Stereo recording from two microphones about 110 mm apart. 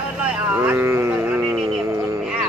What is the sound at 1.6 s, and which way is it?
Music, 25° right (ahead or behind).